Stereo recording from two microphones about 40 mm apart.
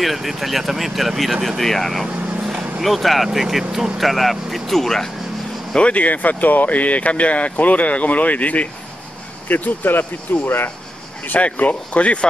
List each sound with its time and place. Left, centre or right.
0.0 s speech: centre
1.6 s speech: centre
5.8 s speech: left
9.5 s speech: left
11.3 s speech: left